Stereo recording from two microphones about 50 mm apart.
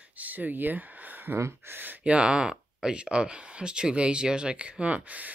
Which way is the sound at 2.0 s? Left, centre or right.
Right.